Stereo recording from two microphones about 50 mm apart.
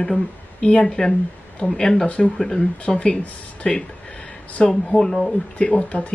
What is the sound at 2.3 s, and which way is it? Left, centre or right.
Speech, centre.